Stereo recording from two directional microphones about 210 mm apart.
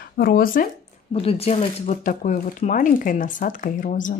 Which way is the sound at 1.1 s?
25° left (ahead or behind).